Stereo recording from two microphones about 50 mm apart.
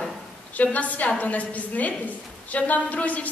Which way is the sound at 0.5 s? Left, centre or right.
Left.